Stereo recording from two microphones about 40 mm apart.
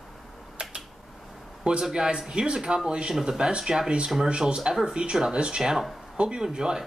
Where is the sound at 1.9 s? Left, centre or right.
Centre.